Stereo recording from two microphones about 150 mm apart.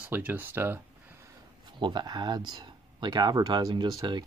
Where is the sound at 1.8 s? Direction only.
30° right (ahead or behind).